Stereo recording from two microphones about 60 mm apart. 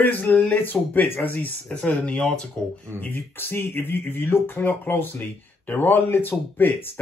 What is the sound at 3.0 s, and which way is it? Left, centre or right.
Speech, left.